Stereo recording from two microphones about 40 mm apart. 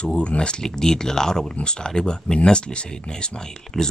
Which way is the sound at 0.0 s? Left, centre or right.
Left.